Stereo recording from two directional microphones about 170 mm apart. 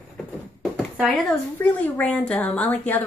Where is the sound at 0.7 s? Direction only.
5° right (ahead or behind).